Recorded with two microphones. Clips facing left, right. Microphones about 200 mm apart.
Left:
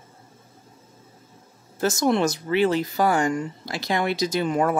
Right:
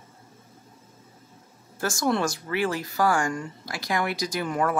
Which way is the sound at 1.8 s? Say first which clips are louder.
Left 4 dB; 20° left (ahead or behind).